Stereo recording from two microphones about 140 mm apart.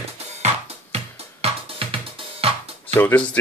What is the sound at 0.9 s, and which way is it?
Music, 45° right (ahead or behind).